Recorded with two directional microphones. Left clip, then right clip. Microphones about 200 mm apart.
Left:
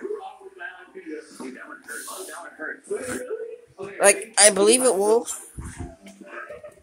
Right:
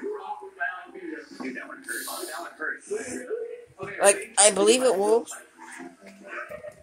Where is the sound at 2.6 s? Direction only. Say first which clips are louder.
Right 1 dB; 50° left (ahead or behind).